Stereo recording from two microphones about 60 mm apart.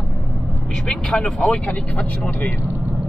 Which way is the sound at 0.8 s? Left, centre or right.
Centre.